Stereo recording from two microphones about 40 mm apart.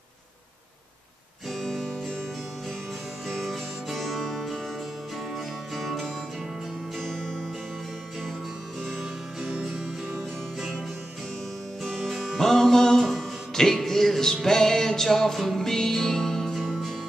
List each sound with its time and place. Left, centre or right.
1.5 s music: centre
3.3 s music: centre
5.8 s music: centre
7.0 s music: centre
9.5 s music: centre
11.8 s music: centre